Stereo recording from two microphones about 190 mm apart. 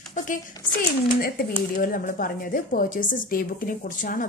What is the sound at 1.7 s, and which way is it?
A woman's voice, 45° left (ahead or behind).